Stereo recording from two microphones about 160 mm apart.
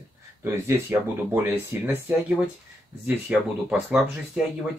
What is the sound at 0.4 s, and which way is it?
Speech, 15° right (ahead or behind).